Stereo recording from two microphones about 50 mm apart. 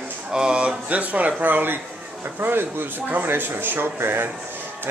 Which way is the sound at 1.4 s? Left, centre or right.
Right.